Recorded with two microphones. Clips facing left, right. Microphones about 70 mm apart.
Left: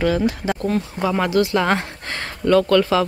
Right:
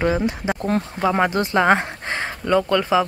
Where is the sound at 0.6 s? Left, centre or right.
Right.